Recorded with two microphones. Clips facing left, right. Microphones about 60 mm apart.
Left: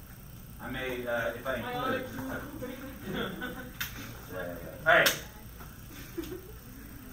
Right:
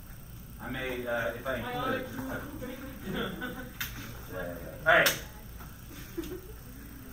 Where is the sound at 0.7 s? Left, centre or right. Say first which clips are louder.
Even; right.